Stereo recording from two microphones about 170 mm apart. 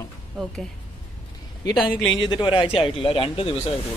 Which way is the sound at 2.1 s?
30° left (ahead or behind).